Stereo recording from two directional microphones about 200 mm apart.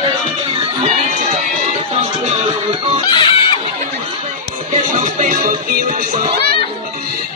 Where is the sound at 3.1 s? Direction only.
25° left (ahead or behind).